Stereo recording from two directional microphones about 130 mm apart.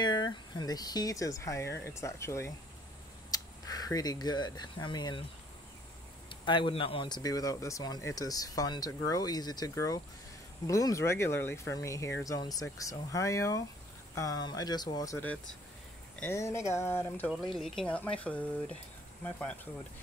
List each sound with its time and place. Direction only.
0.0 s speech: 35° left (ahead or behind)
6.2 s speech: 40° left (ahead or behind)
16.2 s speech: 20° left (ahead or behind)
17.3 s speech: centre (ahead or behind)